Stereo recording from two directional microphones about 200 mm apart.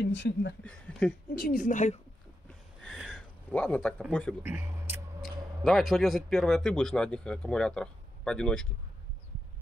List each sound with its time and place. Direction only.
0.0 s speech: 65° left (ahead or behind)
0.6 s speech: 5° left (ahead or behind)
1.3 s a woman's voice: 45° left (ahead or behind)
2.8 s a sound: 5° left (ahead or behind)
4.1 s speech: 5° left (ahead or behind)
4.4 s speech: 10° right (ahead or behind)
5.2 s speech: centre (ahead or behind)